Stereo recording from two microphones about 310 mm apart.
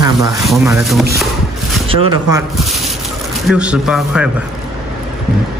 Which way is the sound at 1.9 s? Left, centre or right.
Centre.